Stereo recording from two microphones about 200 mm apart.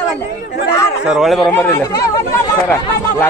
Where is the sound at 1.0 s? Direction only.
5° right (ahead or behind).